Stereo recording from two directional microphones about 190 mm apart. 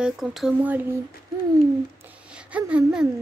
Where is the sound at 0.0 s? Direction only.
Centre (ahead or behind).